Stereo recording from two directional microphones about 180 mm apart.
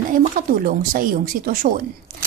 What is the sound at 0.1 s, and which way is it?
Speech, 50° right (ahead or behind).